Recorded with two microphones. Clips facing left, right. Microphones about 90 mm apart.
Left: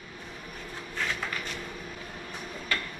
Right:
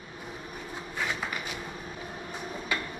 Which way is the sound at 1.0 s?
15° right (ahead or behind).